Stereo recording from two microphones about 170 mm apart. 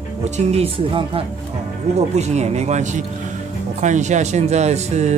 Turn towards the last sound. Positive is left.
turn(degrees=-40)  # may be behind; listen again after turning